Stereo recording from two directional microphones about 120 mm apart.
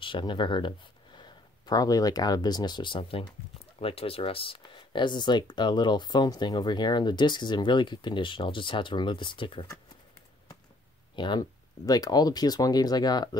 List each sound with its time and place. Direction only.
0.0 s speech: 40° left (ahead or behind)
11.1 s speech: 40° left (ahead or behind)